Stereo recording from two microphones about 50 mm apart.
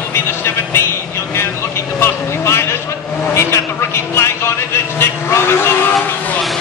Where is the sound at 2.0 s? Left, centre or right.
Left.